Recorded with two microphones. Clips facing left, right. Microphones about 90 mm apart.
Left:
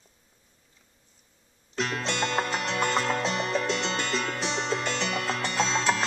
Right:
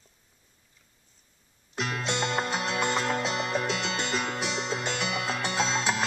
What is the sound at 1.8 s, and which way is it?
Music, 15° right (ahead or behind).